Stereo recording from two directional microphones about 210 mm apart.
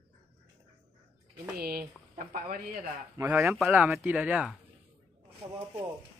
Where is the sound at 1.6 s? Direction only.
45° right (ahead or behind).